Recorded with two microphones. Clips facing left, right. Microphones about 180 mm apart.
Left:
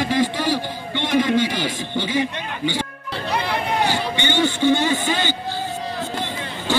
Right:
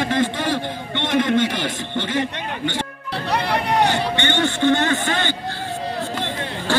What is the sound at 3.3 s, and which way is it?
Hubbub, 65° right (ahead or behind).